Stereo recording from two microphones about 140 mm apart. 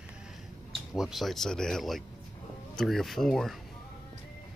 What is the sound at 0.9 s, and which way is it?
Speech, centre (ahead or behind).